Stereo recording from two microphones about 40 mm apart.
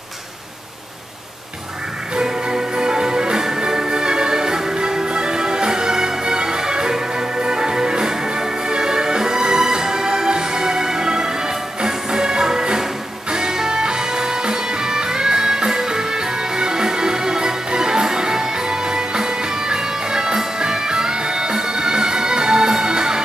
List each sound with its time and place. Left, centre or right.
2.1 s music: centre